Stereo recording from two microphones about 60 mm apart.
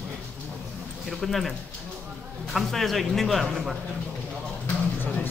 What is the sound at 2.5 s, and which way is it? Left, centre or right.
A man's voice, centre.